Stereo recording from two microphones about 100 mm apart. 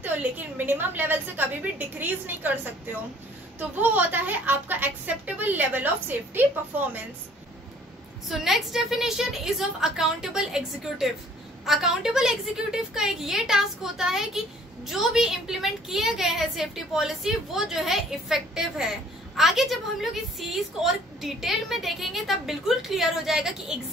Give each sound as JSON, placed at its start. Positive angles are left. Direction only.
{"t": 0.0, "sound": "a woman's voice", "side_deg": -15}
{"t": 8.3, "sound": "a woman's voice", "side_deg": 0}